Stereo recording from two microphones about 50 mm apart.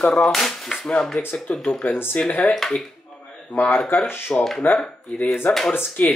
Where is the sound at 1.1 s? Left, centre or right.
Left.